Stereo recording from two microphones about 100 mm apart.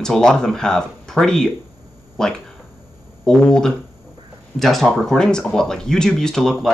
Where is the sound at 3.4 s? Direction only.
5° left (ahead or behind).